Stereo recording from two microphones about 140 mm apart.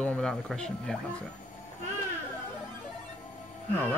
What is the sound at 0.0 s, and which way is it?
Speech, 5° left (ahead or behind).